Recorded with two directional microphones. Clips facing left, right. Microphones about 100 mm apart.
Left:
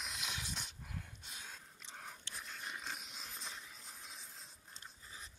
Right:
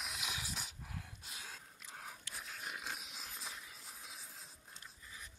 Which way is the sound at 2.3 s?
5° right (ahead or behind).